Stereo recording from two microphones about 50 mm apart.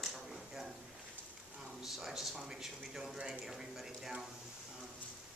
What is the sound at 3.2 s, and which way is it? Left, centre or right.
Speech, centre.